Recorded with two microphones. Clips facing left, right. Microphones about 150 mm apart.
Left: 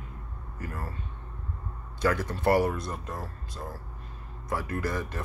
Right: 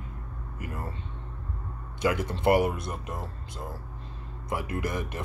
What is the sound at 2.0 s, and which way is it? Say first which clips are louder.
Speech: right 1 dB; 15° right (ahead or behind).